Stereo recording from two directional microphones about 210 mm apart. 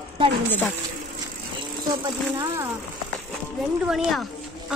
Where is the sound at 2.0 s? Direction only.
15° right (ahead or behind).